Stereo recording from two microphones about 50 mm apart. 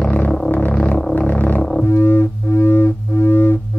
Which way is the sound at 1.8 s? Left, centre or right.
Left.